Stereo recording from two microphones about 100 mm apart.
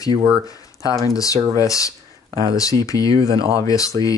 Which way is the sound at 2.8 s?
35° left (ahead or behind).